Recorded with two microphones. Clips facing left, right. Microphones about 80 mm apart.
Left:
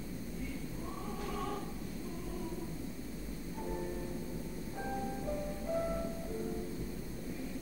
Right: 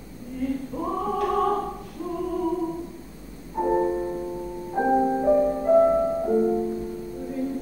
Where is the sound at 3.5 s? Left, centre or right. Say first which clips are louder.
Right 18 dB; right.